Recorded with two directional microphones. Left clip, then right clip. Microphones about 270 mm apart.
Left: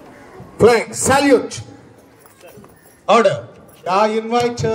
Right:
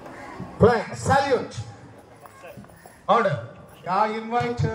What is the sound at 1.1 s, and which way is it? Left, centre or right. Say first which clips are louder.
Speech: left 7 dB; left.